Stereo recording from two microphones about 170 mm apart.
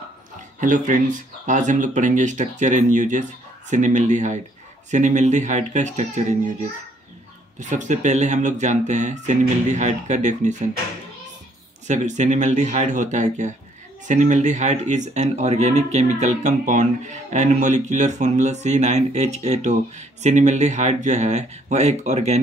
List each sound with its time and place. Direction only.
0.6 s speech: 50° right (ahead or behind)
7.5 s speech: 45° right (ahead or behind)
11.9 s speech: 45° right (ahead or behind)